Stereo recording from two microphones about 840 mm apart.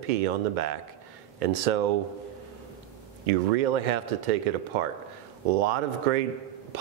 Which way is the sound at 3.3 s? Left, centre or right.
Right.